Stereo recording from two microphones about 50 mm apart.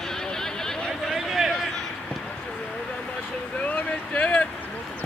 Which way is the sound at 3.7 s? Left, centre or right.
Left.